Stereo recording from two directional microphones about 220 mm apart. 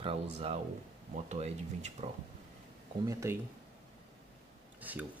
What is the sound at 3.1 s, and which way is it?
Speech, 15° right (ahead or behind).